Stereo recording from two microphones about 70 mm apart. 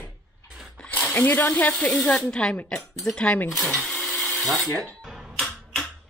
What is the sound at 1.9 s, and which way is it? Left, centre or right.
Speech, centre.